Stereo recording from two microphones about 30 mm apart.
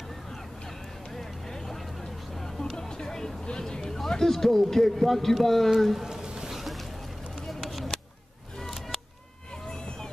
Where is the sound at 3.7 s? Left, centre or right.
Left.